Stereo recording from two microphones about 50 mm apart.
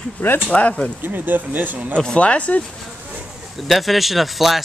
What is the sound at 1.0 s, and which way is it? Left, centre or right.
Speech, right.